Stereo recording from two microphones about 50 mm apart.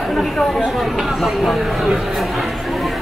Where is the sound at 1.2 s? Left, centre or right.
Centre.